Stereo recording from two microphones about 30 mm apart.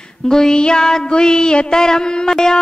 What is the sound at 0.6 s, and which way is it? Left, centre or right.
Music, left.